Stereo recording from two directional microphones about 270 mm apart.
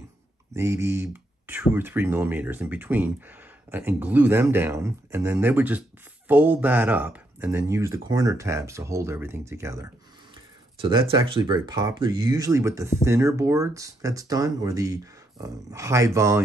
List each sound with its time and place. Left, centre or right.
0.6 s speech: centre